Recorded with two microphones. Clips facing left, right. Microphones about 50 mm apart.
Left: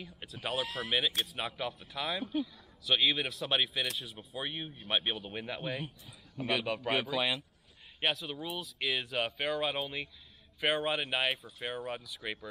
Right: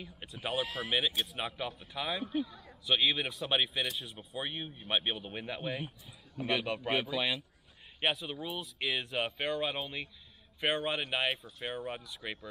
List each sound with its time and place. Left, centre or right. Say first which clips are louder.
0.0 s speech: even; centre
2.4 s a sound: right 1 dB; centre
2.9 s speech: even; centre